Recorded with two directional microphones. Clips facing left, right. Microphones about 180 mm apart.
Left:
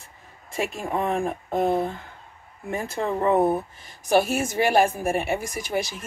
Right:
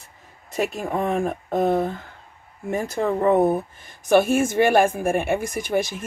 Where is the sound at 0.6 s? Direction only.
45° right (ahead or behind).